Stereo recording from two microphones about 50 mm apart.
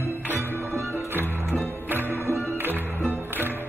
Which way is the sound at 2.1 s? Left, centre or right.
Right.